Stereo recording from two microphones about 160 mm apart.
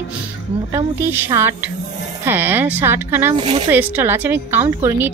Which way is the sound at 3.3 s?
40° right (ahead or behind).